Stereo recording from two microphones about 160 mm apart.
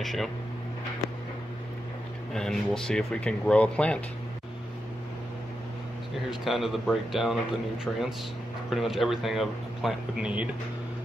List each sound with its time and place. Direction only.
0.0 s speech: centre (ahead or behind)
2.3 s speech: 5° left (ahead or behind)
6.4 s speech: centre (ahead or behind)